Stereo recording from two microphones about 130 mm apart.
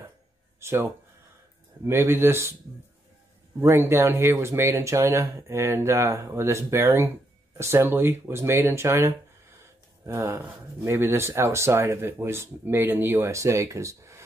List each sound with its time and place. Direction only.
0.6 s speech: 20° right (ahead or behind)
1.9 s speech: 20° right (ahead or behind)
3.6 s speech: 20° right (ahead or behind)